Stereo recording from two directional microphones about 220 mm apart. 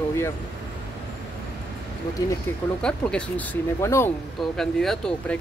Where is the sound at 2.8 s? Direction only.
5° left (ahead or behind).